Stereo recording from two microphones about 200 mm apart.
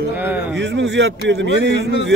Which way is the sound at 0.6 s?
65° right (ahead or behind).